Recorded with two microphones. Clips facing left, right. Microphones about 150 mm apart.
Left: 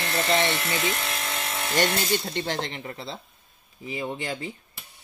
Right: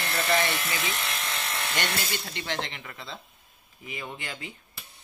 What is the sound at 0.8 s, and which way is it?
Speech, 45° left (ahead or behind).